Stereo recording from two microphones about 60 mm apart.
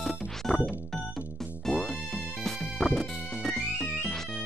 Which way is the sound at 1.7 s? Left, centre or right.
Centre.